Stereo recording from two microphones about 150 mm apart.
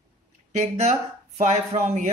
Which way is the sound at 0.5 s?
50° right (ahead or behind).